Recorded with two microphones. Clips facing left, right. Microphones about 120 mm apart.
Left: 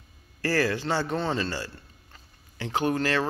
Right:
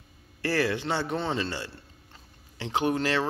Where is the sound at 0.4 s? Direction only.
20° right (ahead or behind).